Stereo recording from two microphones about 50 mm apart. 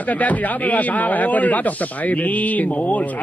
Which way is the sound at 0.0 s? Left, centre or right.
Left.